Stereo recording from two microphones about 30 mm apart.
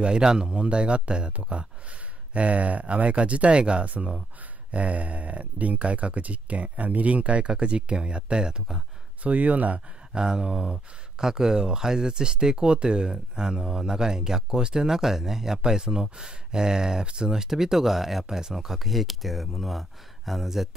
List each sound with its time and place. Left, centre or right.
0.2 s speech: right
2.3 s speech: right
4.6 s speech: right
7.5 s speech: right
9.2 s speech: right
10.1 s speech: right
17.0 s speech: right
17.3 s speech: centre